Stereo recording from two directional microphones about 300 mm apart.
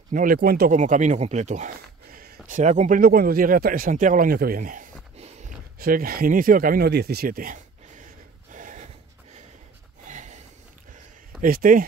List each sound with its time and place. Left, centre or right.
0.1 s speech: right
2.1 s a sound: right
10.0 s snort: right
11.4 s speech: right